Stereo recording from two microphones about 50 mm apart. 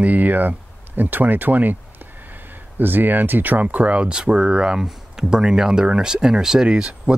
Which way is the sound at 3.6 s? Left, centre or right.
Right.